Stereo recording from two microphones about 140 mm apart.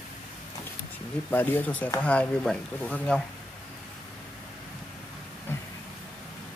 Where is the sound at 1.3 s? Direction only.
15° left (ahead or behind).